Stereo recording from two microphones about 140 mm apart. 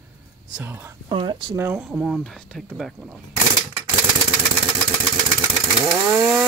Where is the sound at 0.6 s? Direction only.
15° right (ahead or behind).